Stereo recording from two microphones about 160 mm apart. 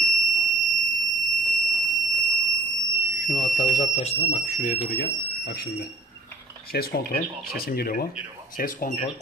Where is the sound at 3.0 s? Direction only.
60° left (ahead or behind).